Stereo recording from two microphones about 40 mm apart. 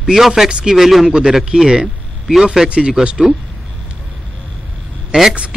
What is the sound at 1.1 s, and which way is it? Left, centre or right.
Speech, centre.